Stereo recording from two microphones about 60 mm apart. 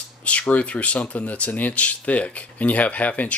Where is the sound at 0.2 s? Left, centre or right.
Left.